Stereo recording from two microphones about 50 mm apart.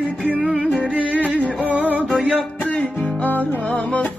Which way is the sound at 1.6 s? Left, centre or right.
Right.